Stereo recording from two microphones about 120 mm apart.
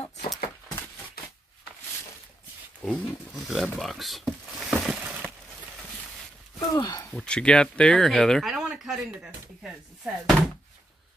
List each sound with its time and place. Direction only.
2.8 s speech: 5° left (ahead or behind)
5.0 s crushing: 15° right (ahead or behind)
6.7 s speech: 30° left (ahead or behind)
7.1 s speech: 5° left (ahead or behind)